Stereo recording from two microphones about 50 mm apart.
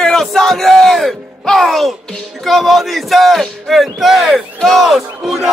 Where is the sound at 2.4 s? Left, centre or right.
Centre.